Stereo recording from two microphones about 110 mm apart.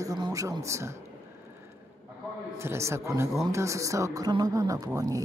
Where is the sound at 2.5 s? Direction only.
25° right (ahead or behind).